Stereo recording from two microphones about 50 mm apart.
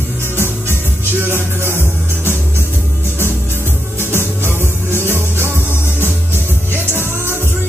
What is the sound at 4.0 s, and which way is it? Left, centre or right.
Music, right.